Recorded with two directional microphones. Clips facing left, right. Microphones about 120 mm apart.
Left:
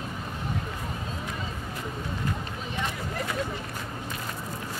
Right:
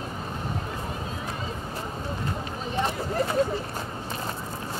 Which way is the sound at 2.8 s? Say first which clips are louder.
Right 7 dB; 35° right (ahead or behind).